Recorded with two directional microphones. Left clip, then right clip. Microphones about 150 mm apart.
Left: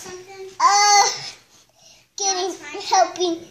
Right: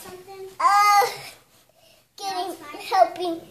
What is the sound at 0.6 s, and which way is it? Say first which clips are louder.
Babbling: left 2 dB; 50° right (ahead or behind).